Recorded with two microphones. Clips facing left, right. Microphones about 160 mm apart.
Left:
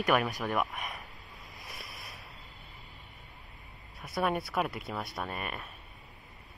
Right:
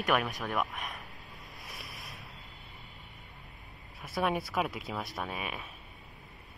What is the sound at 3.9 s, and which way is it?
Speech, centre (ahead or behind).